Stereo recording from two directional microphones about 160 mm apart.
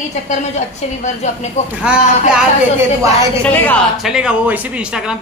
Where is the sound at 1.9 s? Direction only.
5° right (ahead or behind).